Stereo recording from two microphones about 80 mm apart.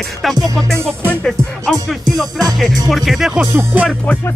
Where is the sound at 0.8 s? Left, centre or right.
Right.